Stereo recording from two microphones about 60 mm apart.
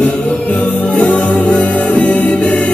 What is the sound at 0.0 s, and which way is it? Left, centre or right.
Music, left.